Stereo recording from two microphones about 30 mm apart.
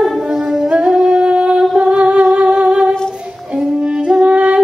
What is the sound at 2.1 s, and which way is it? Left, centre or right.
Music, right.